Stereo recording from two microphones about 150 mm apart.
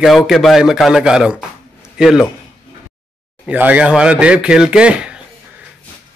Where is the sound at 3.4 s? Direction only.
10° right (ahead or behind).